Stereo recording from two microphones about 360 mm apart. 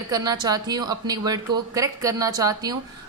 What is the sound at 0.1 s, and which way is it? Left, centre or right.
A woman's voice, centre.